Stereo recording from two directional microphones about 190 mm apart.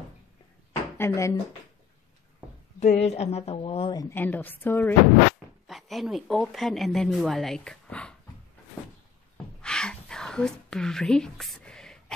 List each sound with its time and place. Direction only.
0.9 s speech: 15° left (ahead or behind)
2.8 s a woman's voice: 35° left (ahead or behind); by 4.9 s 10° left (ahead or behind)
5.7 s speech: centre (ahead or behind)
9.6 s a sound: 5° left (ahead or behind)